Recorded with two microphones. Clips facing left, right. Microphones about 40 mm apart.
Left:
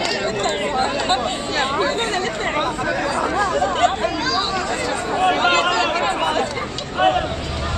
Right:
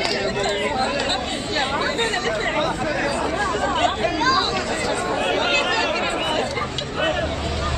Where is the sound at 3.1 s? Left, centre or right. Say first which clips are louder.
Left 2 dB; left.